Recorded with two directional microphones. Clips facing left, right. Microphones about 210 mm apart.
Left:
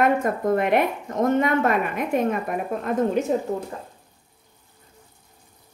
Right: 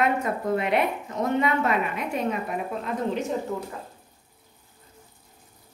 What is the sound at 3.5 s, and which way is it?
Speech, 40° left (ahead or behind).